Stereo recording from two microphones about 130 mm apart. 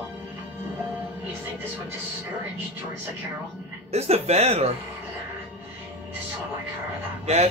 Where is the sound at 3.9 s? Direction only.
55° right (ahead or behind).